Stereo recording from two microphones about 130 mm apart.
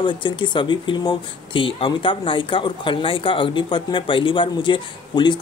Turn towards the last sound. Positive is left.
turn(degrees=35)  # may be behind; listen again after turning